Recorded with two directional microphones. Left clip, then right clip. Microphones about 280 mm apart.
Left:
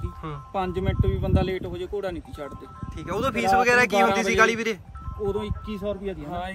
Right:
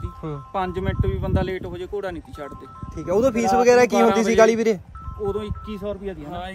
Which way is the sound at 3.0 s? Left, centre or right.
Centre.